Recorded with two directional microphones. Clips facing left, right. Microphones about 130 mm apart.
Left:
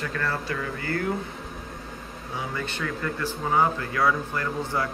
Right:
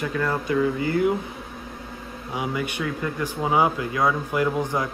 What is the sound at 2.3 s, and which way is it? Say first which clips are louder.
Speech: right 5 dB; 15° right (ahead or behind).